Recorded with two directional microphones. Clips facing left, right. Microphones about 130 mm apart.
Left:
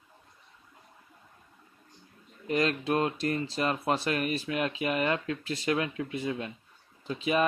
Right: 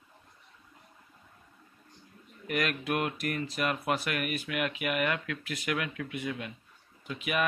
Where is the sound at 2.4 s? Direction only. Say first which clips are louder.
Left 4 dB; 30° left (ahead or behind).